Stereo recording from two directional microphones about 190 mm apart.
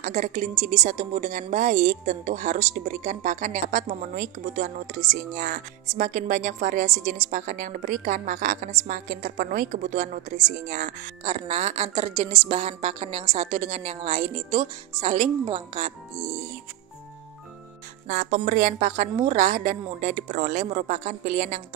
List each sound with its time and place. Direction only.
0.0 s a woman's voice: 40° right (ahead or behind)
18.0 s a woman's voice: 40° right (ahead or behind)